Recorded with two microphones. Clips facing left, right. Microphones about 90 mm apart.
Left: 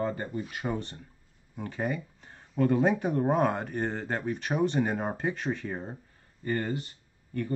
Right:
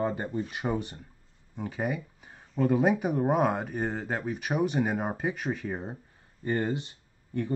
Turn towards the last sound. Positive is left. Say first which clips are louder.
# right 2 dB
turn(degrees=-20)  # may be behind; listen again after turning